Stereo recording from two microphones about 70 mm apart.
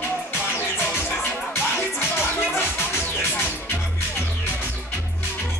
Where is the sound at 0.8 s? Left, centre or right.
Left.